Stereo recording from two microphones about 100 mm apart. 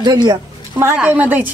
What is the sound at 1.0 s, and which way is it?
Speech, 15° right (ahead or behind).